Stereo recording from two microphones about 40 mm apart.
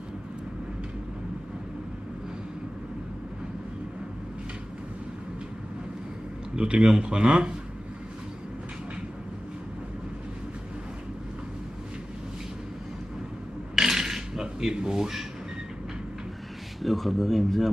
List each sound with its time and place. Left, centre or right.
6.5 s speech: right
13.7 s dishes: centre
16.8 s speech: centre